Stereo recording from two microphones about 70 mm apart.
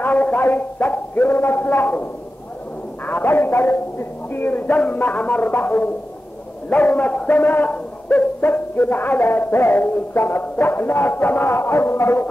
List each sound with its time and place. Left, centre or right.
0.0 s speech: left
3.1 s speech: left
10.6 s music: left